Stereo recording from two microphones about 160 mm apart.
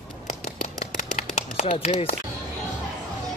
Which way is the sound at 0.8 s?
45° left (ahead or behind).